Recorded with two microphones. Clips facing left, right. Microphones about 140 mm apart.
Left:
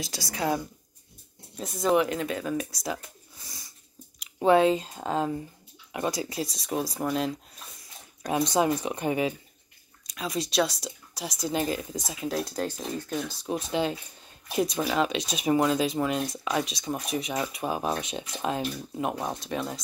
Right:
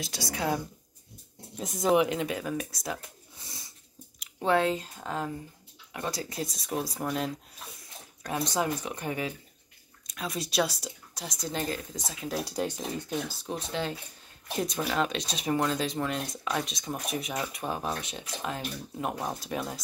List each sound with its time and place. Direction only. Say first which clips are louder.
0.0 s speech: left 2 dB; centre (ahead or behind)
1.9 s speech: even; 10° right (ahead or behind)
4.4 s speech: left 5 dB; 20° left (ahead or behind)
5.9 s speech: left 4 dB; 15° left (ahead or behind)
8.2 s speech: left 5 dB; 20° left (ahead or behind)
10.0 s speech: left 4 dB; centre (ahead or behind)
12.4 s speech: even; 15° right (ahead or behind)
13.5 s speech: left 7 dB; 15° left (ahead or behind)
18.9 s speech: left 2 dB; 5° left (ahead or behind)